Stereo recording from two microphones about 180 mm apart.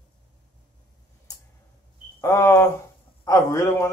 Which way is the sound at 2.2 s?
15° left (ahead or behind).